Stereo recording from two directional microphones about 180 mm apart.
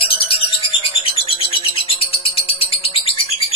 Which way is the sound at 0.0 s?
30° left (ahead or behind).